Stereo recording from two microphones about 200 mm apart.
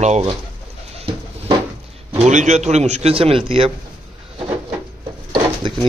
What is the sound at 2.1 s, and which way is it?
A man's voice, 35° right (ahead or behind).